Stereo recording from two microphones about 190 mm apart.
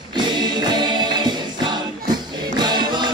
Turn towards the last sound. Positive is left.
turn(degrees=-25)  # may be behind; listen again after turning